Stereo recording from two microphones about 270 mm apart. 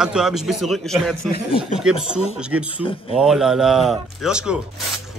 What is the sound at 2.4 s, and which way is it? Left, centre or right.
A man's voice, centre.